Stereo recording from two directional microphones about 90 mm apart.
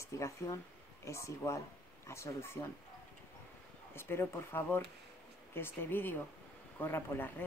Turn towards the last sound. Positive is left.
turn(degrees=25)  # may be behind; listen again after turning